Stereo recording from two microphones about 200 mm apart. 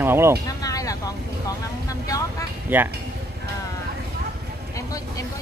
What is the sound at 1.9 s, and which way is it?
Vehicle, 15° left (ahead or behind).